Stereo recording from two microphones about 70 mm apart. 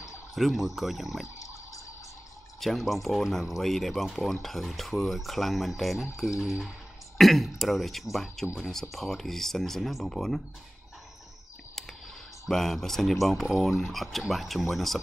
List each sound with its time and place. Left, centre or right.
0.3 s speech: centre
1.2 s a sound: left
2.6 s speech: centre
12.4 s speech: centre